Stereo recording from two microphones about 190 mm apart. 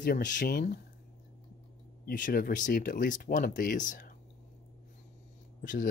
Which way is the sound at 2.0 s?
45° left (ahead or behind).